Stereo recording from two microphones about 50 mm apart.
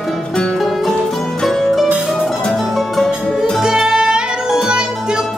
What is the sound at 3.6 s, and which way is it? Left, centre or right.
Music, centre.